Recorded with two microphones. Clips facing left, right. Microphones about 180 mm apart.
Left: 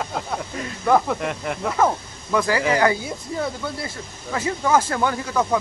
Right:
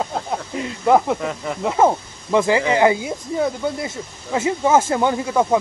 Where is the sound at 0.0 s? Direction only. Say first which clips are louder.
Right 3 dB; 20° right (ahead or behind).